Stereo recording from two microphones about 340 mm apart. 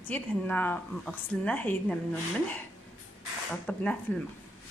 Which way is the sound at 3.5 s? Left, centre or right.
Centre.